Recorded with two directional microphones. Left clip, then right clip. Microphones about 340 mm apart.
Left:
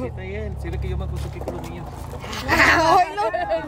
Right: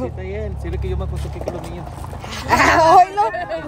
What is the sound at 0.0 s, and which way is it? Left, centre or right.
Speech, centre.